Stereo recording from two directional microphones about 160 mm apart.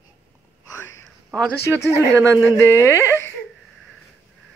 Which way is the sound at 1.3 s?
5° left (ahead or behind).